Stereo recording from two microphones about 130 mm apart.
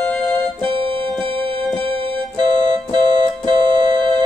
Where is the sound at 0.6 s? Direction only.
40° right (ahead or behind).